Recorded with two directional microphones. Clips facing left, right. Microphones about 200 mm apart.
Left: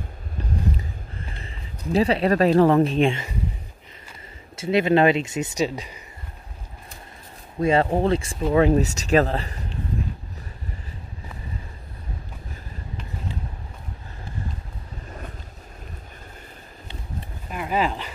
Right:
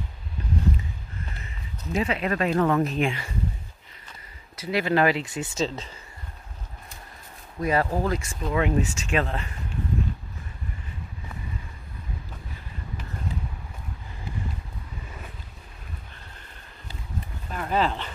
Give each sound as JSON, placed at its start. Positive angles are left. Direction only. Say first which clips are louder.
{"t": 1.9, "sound": "speech", "louder": "left 6 dB", "side_deg": 35}
{"t": 4.6, "sound": "speech", "louder": "left 5 dB", "side_deg": 25}
{"t": 7.6, "sound": "speech", "louder": "left 5 dB", "side_deg": 25}
{"t": 17.5, "sound": "dog", "louder": "left 1 dB", "side_deg": 10}